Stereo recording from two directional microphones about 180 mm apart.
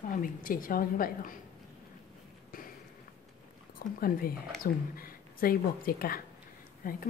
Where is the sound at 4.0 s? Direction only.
55° left (ahead or behind).